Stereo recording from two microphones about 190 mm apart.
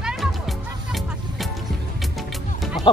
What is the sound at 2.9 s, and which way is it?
Music, 25° left (ahead or behind).